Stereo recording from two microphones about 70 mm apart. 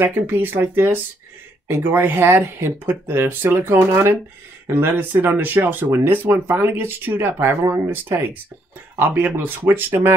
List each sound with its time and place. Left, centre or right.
0.0 s speech: right